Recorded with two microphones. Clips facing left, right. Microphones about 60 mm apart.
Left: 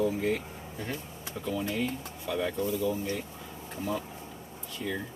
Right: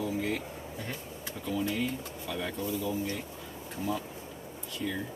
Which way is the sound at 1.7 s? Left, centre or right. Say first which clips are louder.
Left 1 dB; centre.